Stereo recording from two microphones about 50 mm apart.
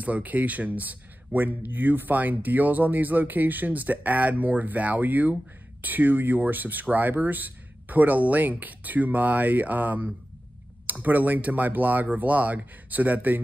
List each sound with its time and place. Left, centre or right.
0.0 s speech: right